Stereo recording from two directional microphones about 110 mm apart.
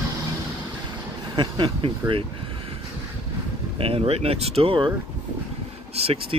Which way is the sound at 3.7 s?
60° right (ahead or behind).